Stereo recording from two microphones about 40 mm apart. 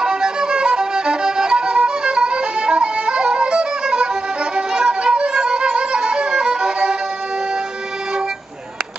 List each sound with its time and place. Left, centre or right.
0.0 s music: centre